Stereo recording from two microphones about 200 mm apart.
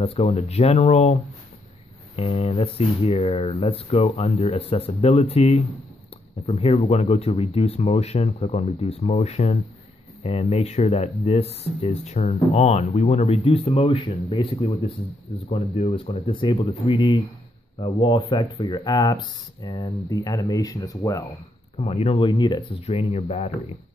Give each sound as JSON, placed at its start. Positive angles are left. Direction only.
{"t": 0.0, "sound": "speech", "side_deg": 30}
{"t": 21.7, "sound": "speech", "side_deg": 30}